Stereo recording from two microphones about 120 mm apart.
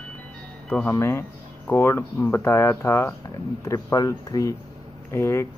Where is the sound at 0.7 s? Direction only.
15° left (ahead or behind).